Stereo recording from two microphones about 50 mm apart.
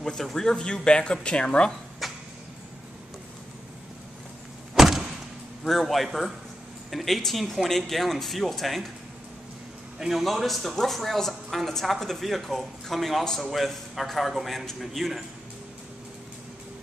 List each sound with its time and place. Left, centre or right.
0.0 s speech: centre
1.7 s a sound: centre
4.7 s vehicle: centre
5.6 s a man's voice: centre
9.9 s speech: centre